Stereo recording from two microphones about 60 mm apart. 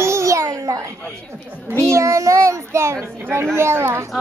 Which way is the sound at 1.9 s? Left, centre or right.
Right.